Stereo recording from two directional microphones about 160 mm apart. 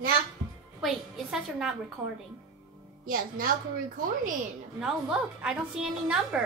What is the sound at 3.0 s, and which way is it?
Speech, 65° right (ahead or behind).